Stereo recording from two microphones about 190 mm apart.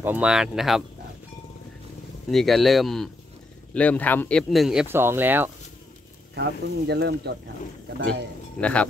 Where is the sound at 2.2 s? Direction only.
Centre (ahead or behind).